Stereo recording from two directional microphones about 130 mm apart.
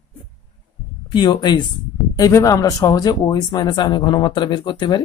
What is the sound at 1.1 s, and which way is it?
A woman's voice, 35° left (ahead or behind).